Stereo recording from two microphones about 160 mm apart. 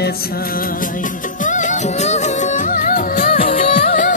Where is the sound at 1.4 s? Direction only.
50° left (ahead or behind).